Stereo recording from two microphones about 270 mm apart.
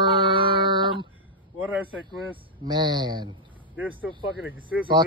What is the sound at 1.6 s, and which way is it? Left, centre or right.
Speech, centre.